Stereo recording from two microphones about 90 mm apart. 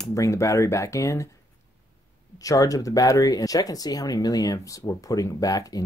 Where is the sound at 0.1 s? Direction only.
35° left (ahead or behind).